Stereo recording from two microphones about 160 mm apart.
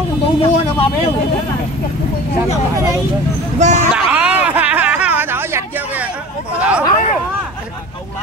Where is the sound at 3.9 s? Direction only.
10° right (ahead or behind).